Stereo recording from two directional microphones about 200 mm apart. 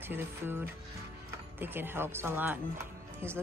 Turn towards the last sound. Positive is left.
turn(degrees=-10)  # may be behind; listen again after turning